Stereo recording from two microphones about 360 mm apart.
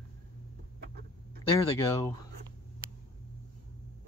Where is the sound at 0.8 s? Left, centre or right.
Right.